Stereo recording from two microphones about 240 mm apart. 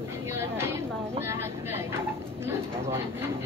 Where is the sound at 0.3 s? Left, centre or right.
Centre.